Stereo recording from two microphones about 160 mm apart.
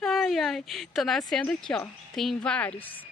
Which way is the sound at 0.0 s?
Centre (ahead or behind).